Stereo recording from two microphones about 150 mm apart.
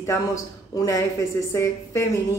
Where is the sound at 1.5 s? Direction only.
20° left (ahead or behind).